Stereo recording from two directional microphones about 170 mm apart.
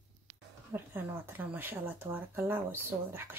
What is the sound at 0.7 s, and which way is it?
Speech, 10° right (ahead or behind).